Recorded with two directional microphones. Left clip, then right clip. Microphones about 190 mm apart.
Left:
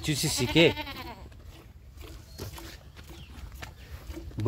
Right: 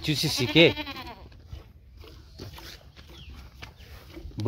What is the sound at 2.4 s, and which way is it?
Wild animals, 30° left (ahead or behind).